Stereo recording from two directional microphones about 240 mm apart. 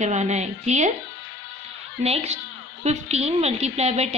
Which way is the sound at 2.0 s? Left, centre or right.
Right.